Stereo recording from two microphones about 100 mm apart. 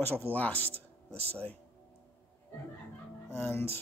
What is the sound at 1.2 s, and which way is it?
Speech, 90° right.